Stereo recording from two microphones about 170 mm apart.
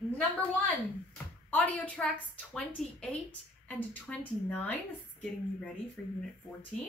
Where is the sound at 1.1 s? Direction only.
10° left (ahead or behind).